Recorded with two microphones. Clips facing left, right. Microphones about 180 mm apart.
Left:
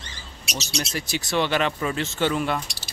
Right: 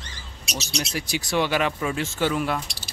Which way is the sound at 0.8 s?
10° right (ahead or behind).